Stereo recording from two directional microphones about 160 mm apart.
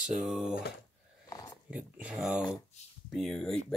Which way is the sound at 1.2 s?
25° left (ahead or behind).